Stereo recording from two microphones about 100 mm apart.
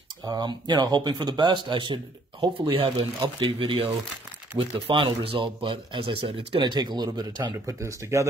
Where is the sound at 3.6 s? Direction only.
70° right (ahead or behind); by 7.5 s 45° right (ahead or behind).